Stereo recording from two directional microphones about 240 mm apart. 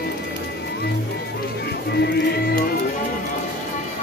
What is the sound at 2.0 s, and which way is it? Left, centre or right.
Music, left.